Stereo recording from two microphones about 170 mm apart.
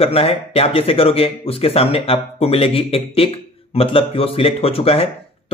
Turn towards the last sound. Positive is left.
turn(degrees=35)  # may be behind; listen again after turning